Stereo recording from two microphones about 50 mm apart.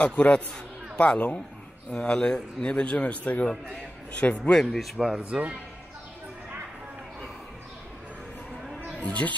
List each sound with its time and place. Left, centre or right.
0.0 s speech: left
1.9 s a man's voice: centre
4.4 s speech: centre
5.2 s speech: right
9.0 s speech: left